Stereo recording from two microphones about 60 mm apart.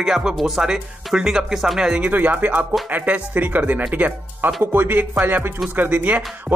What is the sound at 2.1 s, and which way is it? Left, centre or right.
Speech, right.